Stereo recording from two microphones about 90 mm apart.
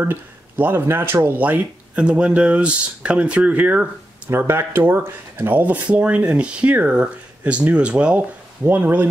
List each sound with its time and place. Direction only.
0.0 s speech: 25° right (ahead or behind)